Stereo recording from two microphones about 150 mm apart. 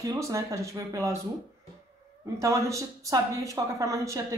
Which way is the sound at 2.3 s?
20° right (ahead or behind).